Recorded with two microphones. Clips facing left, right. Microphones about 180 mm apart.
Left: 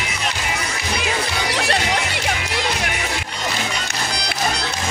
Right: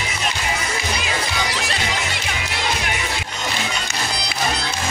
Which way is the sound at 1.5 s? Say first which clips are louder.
Left 4 dB; 60° left (ahead or behind).